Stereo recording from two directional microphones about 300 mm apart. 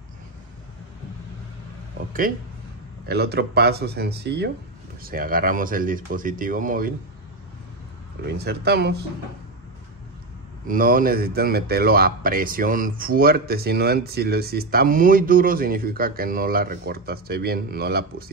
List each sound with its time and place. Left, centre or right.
3.1 s speech: right
8.3 s speech: right
10.7 s speech: right